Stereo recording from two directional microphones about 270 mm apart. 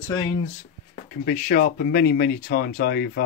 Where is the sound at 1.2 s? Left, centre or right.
Left.